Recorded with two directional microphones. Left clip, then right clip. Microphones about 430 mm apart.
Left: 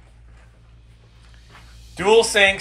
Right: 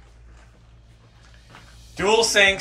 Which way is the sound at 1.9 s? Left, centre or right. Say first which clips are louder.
Left 2 dB; centre.